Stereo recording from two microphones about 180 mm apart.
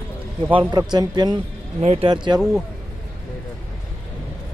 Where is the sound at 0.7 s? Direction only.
20° right (ahead or behind).